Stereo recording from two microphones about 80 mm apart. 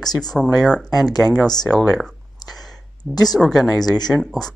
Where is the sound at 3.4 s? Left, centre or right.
Centre.